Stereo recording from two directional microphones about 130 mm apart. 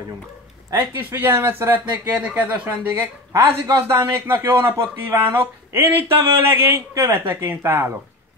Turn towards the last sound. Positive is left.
turn(degrees=-20)  # may be behind; listen again after turning